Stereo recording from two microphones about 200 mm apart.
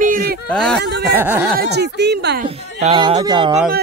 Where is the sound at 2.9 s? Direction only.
25° right (ahead or behind).